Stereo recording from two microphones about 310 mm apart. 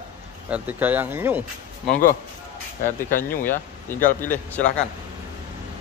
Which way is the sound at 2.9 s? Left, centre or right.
Left.